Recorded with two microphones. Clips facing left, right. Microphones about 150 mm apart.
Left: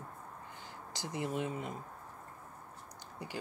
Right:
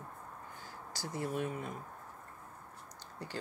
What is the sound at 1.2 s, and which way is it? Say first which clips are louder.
Speech: even; 20° left (ahead or behind).